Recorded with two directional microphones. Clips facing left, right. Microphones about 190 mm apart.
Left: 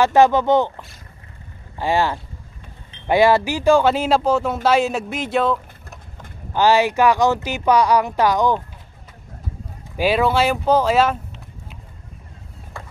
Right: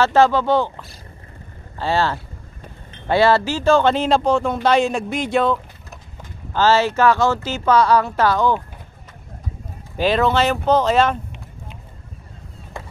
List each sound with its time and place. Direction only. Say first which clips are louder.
0.0 s speech: left 1 dB; 15° left (ahead or behind)
6.5 s speech: left 1 dB; 15° left (ahead or behind)
9.9 s speech: even; 10° left (ahead or behind)